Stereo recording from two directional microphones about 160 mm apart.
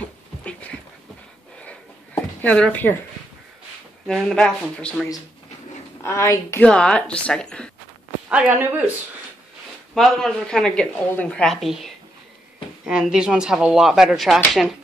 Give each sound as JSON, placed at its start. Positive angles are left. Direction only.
{"t": 0.0, "sound": "a sound", "side_deg": 10}
{"t": 2.4, "sound": "speech", "side_deg": 10}
{"t": 4.1, "sound": "speech", "side_deg": 5}
{"t": 6.0, "sound": "speech", "side_deg": 15}
{"t": 6.6, "sound": "speech", "side_deg": 5}
{"t": 8.3, "sound": "speech", "side_deg": -10}
{"t": 9.9, "sound": "speech", "side_deg": 0}